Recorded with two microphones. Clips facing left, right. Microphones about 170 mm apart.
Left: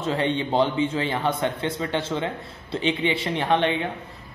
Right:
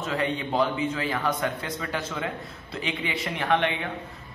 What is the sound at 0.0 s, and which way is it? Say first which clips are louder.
A man's voice: left 4 dB; 25° left (ahead or behind).